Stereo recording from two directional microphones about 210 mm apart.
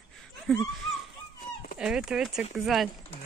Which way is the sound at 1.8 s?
5° right (ahead or behind).